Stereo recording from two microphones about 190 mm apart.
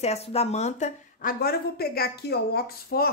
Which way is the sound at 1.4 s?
55° left (ahead or behind).